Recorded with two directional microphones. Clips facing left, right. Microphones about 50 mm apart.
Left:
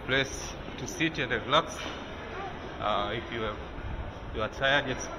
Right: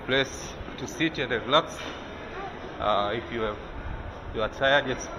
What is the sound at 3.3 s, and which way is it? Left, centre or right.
A man's voice, centre.